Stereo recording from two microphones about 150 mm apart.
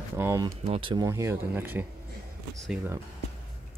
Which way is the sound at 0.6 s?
40° right (ahead or behind).